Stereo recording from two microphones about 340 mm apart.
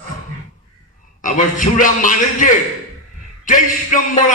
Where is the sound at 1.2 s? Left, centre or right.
Left.